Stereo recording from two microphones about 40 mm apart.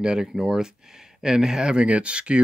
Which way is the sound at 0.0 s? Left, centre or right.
Centre.